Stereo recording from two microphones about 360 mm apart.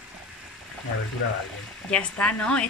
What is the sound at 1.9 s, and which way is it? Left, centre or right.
Speech, centre.